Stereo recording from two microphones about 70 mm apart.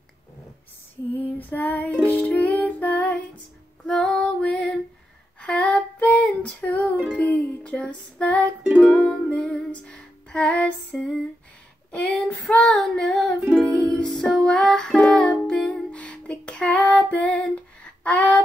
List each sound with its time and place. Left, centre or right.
1.1 s child singing: left
2.0 s music: left
3.8 s female singing: centre
5.4 s music: centre
11.9 s a sound: centre
12.4 s female singing: centre
12.8 s child singing: centre
13.7 s music: centre
17.1 s female singing: left